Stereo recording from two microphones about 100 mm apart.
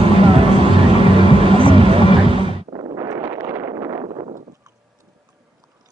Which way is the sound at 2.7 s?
40° right (ahead or behind).